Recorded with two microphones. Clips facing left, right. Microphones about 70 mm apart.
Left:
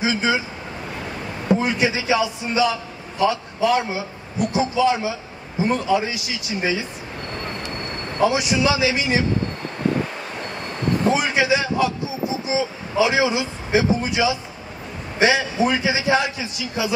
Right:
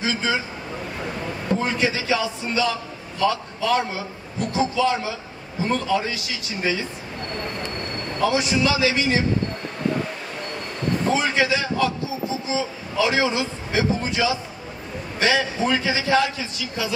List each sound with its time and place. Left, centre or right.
0.0 s speech: centre
1.5 s a man's voice: centre
8.2 s speech: centre
11.1 s a sound: centre
12.4 s a man's voice: centre